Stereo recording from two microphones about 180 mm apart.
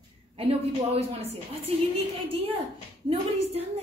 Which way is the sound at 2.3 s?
30° right (ahead or behind).